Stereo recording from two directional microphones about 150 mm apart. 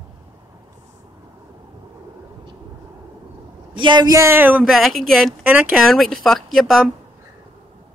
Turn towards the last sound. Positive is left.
turn(degrees=0)  # may be behind; listen again after turning